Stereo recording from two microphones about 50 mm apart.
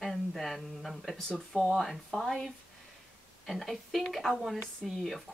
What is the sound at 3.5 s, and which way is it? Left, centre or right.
Speech, centre.